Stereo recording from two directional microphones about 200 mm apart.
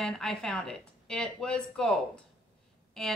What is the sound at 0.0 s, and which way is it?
Speech, centre (ahead or behind).